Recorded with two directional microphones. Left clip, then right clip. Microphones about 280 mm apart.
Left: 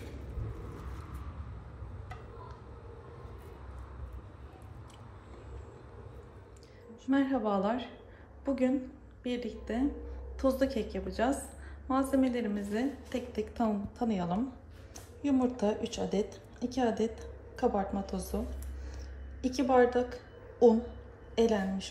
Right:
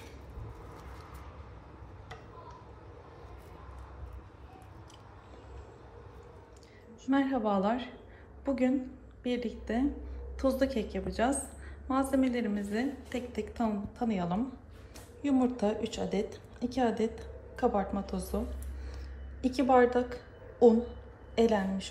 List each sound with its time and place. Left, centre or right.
7.1 s a woman's voice: centre
17.0 s a woman's voice: left
17.6 s a woman's voice: centre